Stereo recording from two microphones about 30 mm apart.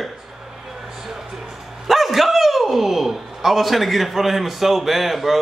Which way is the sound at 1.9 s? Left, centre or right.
Centre.